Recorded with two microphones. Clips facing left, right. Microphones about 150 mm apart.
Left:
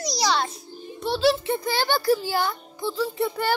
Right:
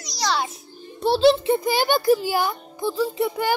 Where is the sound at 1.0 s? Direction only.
30° right (ahead or behind).